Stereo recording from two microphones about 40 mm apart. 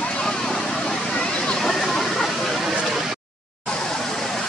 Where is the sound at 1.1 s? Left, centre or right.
Left.